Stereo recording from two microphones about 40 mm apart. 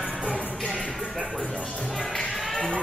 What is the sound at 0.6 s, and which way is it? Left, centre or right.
Music, left.